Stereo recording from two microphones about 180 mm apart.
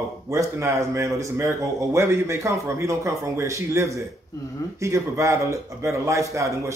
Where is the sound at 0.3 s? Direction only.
15° right (ahead or behind).